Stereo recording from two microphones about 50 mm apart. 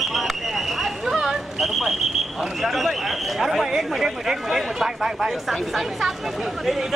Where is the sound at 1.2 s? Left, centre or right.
Centre.